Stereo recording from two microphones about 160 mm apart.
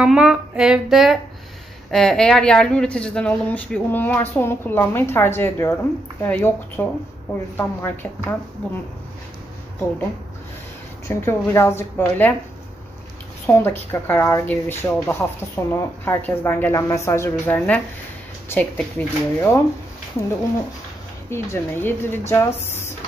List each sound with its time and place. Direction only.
0.0 s speech: 5° right (ahead or behind); by 8.4 s 15° left (ahead or behind)
11.1 s speech: 15° left (ahead or behind)
13.5 s speech: 15° left (ahead or behind)
21.3 s speech: 15° left (ahead or behind)